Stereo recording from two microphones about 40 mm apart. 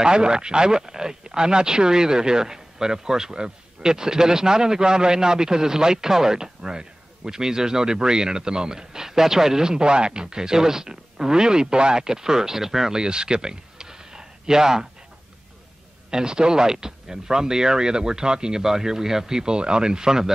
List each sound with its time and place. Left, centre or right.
0.0 s speech: right
16.1 s speech: centre